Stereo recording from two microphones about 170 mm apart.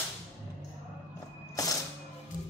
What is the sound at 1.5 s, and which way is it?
Music, 20° left (ahead or behind).